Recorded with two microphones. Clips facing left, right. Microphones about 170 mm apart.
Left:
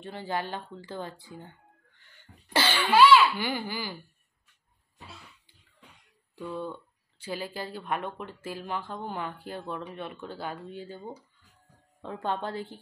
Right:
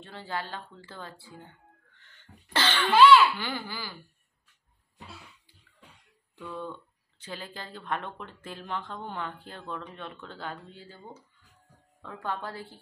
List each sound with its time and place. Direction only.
0.0 s speech: 15° left (ahead or behind)
6.3 s speech: 10° left (ahead or behind)